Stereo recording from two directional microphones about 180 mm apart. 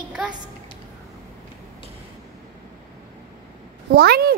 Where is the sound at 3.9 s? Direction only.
60° right (ahead or behind).